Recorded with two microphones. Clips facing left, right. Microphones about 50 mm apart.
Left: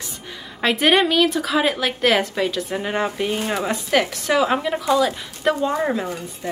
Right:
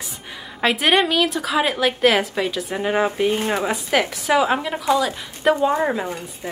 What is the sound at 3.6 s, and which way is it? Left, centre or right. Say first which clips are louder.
A woman's voice: even; centre.